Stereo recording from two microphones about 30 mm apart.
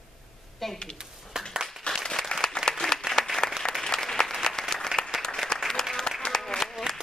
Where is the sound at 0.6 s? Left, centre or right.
Centre.